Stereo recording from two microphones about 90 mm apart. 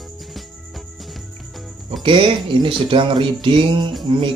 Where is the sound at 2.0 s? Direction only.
70° right (ahead or behind).